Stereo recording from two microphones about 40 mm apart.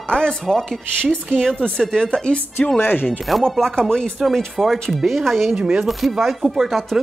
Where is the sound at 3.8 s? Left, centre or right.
Centre.